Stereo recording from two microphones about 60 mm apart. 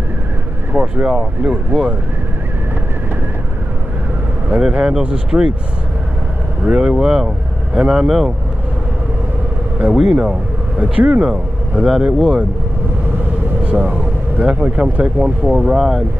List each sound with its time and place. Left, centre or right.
0.7 s speech: right
4.5 s speech: centre
6.8 s speech: centre
10.0 s speech: centre
13.7 s speech: right